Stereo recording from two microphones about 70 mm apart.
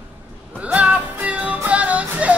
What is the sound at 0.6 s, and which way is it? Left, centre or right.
Music, centre.